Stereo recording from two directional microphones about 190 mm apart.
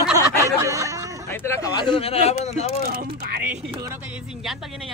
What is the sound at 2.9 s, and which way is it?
Speech, 50° right (ahead or behind).